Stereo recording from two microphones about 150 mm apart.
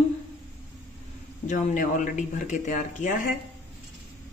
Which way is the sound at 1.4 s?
55° left (ahead or behind).